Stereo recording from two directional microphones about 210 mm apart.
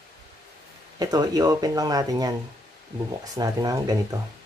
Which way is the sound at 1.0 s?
20° right (ahead or behind).